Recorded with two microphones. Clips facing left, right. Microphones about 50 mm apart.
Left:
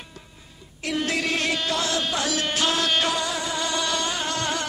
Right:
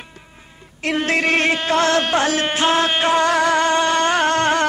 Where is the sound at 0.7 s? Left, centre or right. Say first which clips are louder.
Right 6 dB; right.